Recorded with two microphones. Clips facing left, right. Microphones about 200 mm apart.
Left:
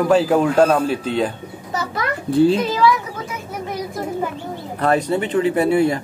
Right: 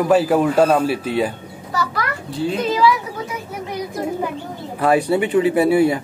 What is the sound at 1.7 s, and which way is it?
Children playing, 20° left (ahead or behind).